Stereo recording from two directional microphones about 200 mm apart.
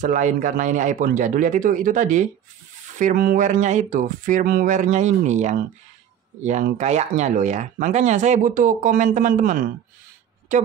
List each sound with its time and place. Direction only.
0.0 s speech: 40° right (ahead or behind)